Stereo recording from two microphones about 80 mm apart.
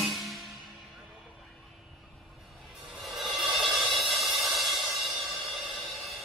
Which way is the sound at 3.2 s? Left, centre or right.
Centre.